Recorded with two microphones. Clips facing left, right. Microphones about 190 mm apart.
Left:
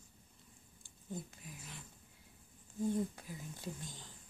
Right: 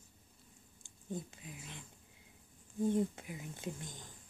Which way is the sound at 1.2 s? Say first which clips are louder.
Right 2 dB; 20° right (ahead or behind).